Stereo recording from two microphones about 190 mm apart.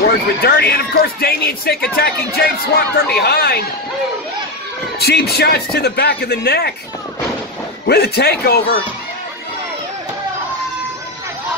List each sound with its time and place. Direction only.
0.0 s speech: 55° left (ahead or behind)
4.9 s speech: 55° left (ahead or behind)
7.8 s speech: 60° left (ahead or behind)